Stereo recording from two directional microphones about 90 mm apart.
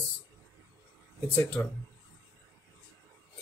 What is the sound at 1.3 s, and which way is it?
Speech, 15° left (ahead or behind).